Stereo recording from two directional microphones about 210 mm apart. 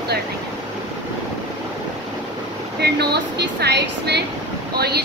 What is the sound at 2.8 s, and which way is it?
Speech, 50° right (ahead or behind).